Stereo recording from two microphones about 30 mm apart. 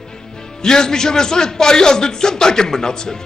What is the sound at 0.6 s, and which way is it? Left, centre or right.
A man's voice, left.